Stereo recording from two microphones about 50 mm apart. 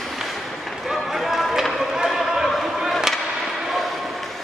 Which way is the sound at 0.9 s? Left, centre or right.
Centre.